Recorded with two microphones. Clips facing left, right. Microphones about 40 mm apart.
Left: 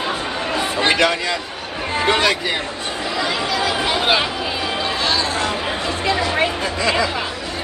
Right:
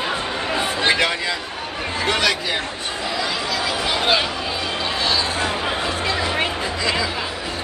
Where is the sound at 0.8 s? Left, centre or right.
Left.